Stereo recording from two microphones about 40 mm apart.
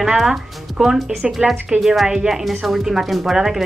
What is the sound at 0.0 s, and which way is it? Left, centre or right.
Speech, centre.